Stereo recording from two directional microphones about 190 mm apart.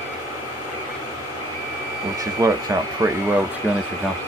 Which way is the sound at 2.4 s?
20° right (ahead or behind).